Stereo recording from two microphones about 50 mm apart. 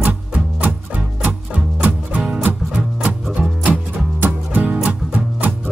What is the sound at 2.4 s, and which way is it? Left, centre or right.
Music, right.